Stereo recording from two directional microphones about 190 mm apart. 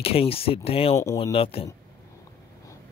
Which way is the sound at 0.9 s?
15° left (ahead or behind).